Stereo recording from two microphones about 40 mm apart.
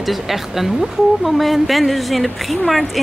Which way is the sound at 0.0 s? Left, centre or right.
Centre.